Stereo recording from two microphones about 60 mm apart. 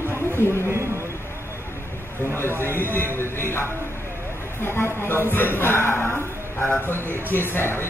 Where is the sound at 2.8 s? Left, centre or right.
Left.